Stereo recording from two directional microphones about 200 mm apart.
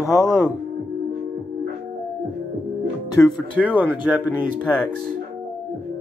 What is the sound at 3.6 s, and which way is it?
Speech, 10° right (ahead or behind).